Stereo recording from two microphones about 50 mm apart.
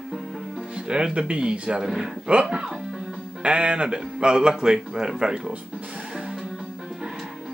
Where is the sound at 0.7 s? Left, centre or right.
Centre.